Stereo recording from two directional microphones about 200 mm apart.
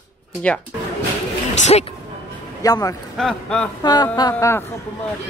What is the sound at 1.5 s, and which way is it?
Speech, 35° left (ahead or behind).